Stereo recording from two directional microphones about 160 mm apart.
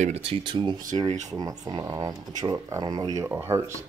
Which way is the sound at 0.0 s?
40° right (ahead or behind).